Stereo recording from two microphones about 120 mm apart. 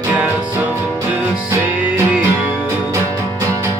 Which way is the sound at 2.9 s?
25° right (ahead or behind).